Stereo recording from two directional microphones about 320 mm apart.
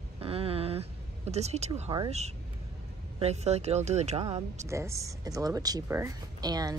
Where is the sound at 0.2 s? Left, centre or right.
Centre.